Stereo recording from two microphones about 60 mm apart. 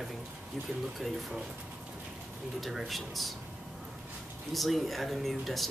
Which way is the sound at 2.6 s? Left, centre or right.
Centre.